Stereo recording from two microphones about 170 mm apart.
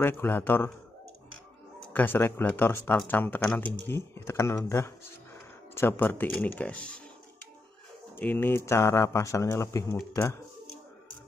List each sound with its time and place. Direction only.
0.0 s speech: 15° left (ahead or behind)
2.0 s speech: 10° left (ahead or behind)
8.2 s speech: 10° left (ahead or behind)